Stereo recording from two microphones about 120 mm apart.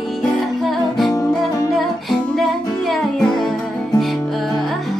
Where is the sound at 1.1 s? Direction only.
30° left (ahead or behind).